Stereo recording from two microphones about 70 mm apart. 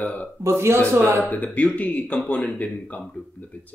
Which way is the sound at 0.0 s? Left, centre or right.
Left.